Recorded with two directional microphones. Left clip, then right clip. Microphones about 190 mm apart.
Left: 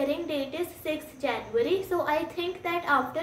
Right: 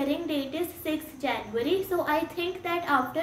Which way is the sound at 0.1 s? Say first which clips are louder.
Even; 15° left (ahead or behind).